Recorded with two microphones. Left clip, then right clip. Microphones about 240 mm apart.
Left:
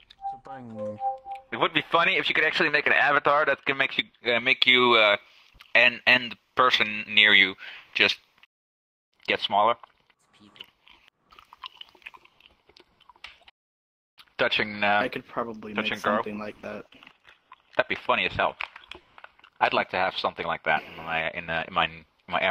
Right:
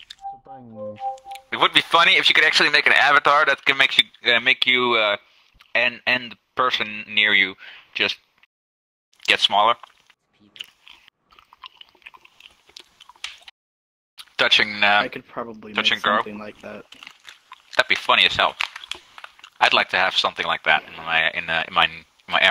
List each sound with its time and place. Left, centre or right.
0.4 s music: left
1.3 s speech: right
4.6 s speech: centre
9.2 s speech: right
10.5 s biting: right
11.2 s biting: centre
12.2 s chewing: right
14.1 s speech: right
15.0 s speech: centre
15.7 s a man's voice: right
16.3 s speech: centre
16.9 s biting: right
20.9 s a man's voice: right